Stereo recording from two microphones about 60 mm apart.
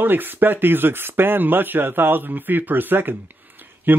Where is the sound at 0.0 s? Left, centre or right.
Right.